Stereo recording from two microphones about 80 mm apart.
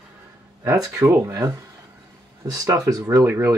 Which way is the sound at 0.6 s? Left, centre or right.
Right.